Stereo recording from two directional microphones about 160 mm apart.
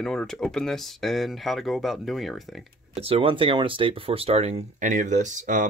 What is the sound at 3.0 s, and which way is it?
Speech, 35° right (ahead or behind).